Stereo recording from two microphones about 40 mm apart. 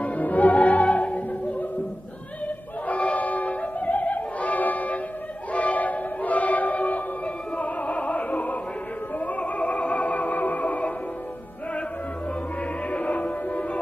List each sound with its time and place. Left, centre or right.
0.0 s music: left
7.5 s opera: left
9.2 s music: left
12.9 s music: left